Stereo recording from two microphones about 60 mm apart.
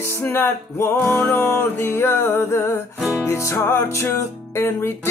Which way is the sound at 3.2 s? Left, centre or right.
Left.